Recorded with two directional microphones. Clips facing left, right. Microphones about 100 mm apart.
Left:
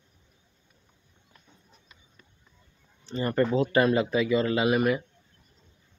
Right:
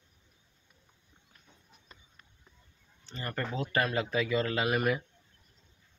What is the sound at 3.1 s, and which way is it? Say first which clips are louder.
Speech: left 11 dB; 20° left (ahead or behind).